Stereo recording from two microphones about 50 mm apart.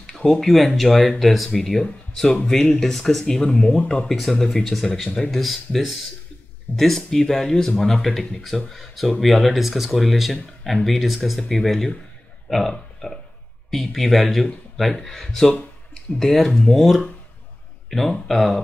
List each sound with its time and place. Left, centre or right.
0.0 s speech: centre
5.4 s speech: centre
7.0 s speech: centre